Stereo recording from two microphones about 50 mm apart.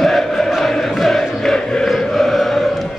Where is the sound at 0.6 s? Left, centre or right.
Centre.